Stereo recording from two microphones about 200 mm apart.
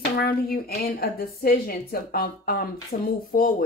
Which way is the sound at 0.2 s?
50° left (ahead or behind).